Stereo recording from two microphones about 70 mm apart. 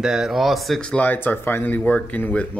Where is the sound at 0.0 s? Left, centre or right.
Centre.